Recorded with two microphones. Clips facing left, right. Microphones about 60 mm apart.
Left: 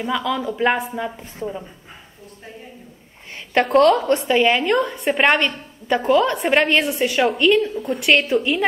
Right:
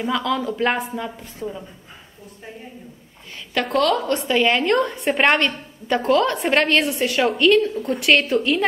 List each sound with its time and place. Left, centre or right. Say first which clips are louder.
0.0 s speech: even; centre
3.8 s speech: left 5 dB; left
4.3 s a woman's voice: even; centre